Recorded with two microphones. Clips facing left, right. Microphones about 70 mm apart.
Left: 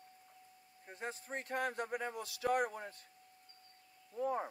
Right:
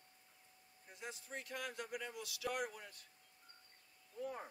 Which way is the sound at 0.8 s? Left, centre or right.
Left.